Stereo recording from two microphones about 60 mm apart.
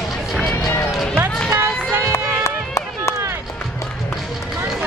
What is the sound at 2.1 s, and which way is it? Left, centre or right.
Music, left.